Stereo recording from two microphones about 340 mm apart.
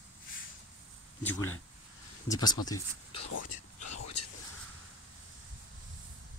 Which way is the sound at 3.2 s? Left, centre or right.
Left.